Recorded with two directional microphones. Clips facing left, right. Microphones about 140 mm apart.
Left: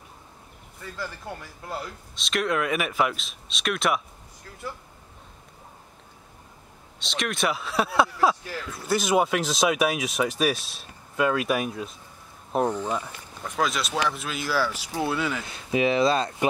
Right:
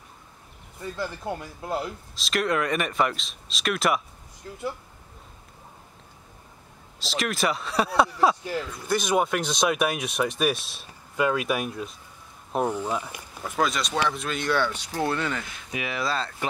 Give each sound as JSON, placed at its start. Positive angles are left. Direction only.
{"t": 0.7, "sound": "speech", "side_deg": -20}
{"t": 2.1, "sound": "speech", "side_deg": 0}
{"t": 4.4, "sound": "speech", "side_deg": -20}
{"t": 7.0, "sound": "speech", "side_deg": 0}
{"t": 15.4, "sound": "speech", "side_deg": 30}